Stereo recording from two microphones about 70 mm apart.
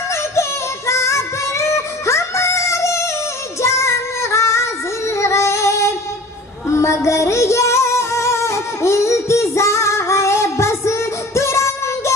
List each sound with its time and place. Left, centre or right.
0.1 s music: left
3.6 s female singing: left
6.7 s music: left